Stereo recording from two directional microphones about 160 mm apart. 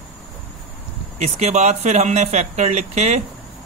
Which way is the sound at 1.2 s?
45° right (ahead or behind).